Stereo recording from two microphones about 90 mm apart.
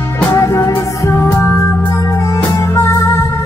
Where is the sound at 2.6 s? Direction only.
30° left (ahead or behind).